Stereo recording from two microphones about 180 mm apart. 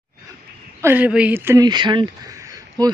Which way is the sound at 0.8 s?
10° right (ahead or behind).